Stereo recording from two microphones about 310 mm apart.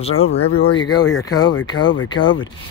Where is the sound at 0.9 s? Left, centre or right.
Left.